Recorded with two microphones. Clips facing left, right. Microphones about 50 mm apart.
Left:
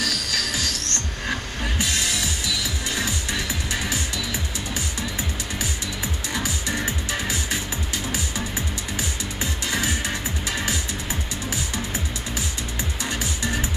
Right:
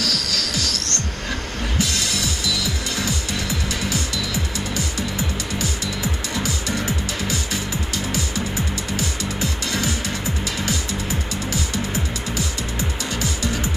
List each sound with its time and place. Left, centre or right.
0.0 s music: left
8.9 s music: left